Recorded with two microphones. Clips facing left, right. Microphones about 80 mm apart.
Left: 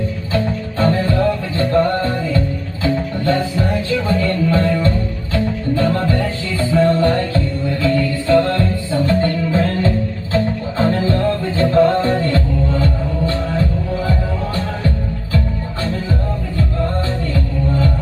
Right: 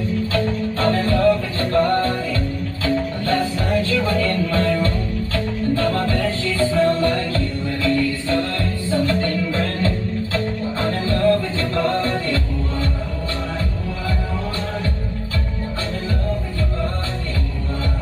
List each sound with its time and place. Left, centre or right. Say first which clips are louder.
0.8 s music: even; left